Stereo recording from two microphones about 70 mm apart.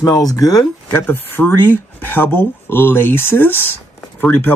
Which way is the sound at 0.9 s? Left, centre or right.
Left.